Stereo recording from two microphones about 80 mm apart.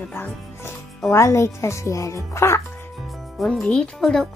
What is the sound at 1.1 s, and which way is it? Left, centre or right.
Speech, left.